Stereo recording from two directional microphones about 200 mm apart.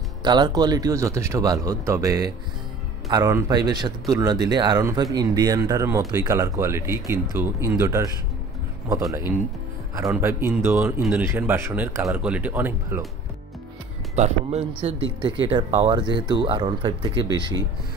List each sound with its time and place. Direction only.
0.2 s speech: 20° right (ahead or behind)
9.1 s speech: 10° right (ahead or behind)
14.1 s speech: 35° right (ahead or behind)